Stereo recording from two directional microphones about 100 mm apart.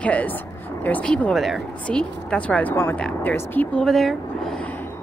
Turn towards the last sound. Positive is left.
turn(degrees=20)  # may be behind; listen again after turning